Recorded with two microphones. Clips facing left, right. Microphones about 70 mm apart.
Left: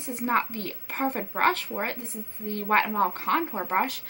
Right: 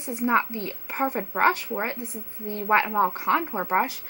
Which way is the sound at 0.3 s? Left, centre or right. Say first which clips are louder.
Right 2 dB; right.